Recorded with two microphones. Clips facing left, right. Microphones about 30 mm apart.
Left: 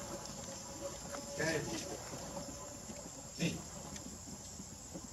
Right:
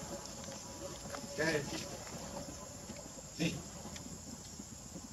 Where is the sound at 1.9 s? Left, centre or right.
Centre.